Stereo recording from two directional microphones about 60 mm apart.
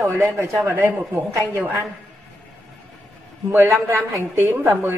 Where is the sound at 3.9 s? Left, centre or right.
Right.